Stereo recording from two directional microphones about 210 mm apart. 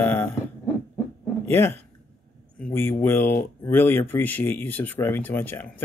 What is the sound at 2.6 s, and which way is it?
Speech, 10° left (ahead or behind).